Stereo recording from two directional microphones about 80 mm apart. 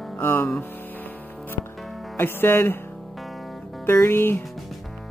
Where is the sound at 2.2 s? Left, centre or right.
Left.